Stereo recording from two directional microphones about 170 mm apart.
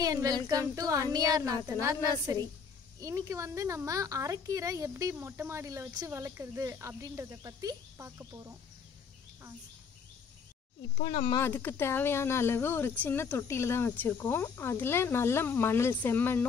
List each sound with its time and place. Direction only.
0.0 s child singing: 20° right (ahead or behind)
3.0 s a woman's voice: 20° right (ahead or behind)
11.0 s speech: 35° left (ahead or behind)
11.3 s speech: 10° left (ahead or behind)